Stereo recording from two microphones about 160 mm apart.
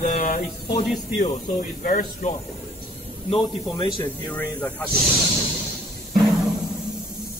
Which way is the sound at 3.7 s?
20° left (ahead or behind).